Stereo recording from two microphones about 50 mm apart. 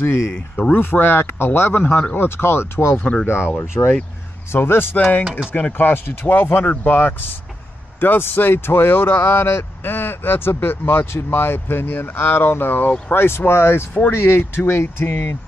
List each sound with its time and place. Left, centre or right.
0.3 s speech: left
0.7 s speech: left